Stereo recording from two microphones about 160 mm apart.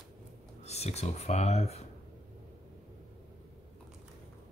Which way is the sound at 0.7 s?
40° left (ahead or behind).